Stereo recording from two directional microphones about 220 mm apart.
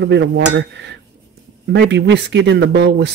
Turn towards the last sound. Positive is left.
turn(degrees=-50)  # may be behind; listen again after turning